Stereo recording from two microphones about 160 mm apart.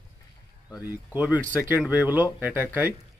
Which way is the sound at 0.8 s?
10° right (ahead or behind).